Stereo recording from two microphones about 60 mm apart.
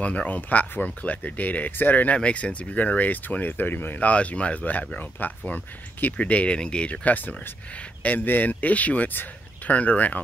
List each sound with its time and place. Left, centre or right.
0.0 s speech: left
2.1 s speech: centre
4.1 s speech: left